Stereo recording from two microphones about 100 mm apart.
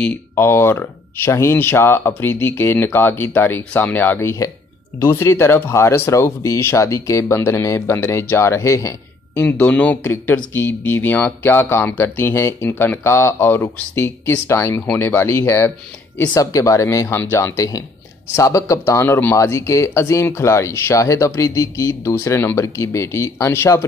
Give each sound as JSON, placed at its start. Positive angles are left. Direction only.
{"t": 0.0, "sound": "speech", "side_deg": 20}
{"t": 9.4, "sound": "speech", "side_deg": 15}